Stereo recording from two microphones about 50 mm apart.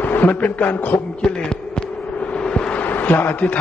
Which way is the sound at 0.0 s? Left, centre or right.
Left.